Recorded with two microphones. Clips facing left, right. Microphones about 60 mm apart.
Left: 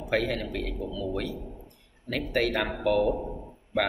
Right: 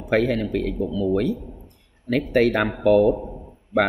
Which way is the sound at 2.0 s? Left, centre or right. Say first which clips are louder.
Right 8 dB; right.